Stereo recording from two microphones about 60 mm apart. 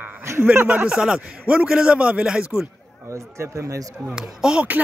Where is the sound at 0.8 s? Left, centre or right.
Centre.